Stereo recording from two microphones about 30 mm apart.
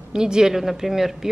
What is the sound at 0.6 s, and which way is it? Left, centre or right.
Speech, centre.